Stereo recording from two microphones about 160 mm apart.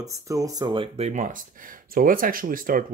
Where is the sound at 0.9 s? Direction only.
45° right (ahead or behind).